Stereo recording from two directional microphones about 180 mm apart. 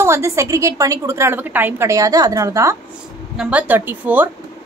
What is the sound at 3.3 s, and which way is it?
Speech, 5° right (ahead or behind).